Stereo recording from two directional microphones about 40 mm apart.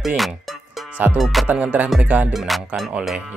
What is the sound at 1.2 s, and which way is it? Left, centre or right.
Music, centre.